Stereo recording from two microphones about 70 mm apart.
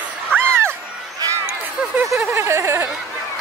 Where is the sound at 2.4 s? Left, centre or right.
Right.